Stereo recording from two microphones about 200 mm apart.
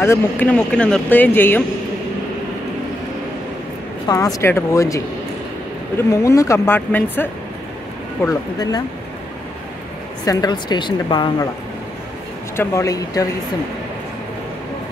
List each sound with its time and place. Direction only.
0.0 s speech: 10° left (ahead or behind)
4.1 s speech: 15° left (ahead or behind)
10.2 s a woman's voice: 20° left (ahead or behind)
12.5 s speech: 15° left (ahead or behind)